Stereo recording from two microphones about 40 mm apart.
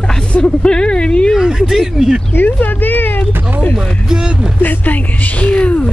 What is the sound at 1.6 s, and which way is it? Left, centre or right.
Speech, centre.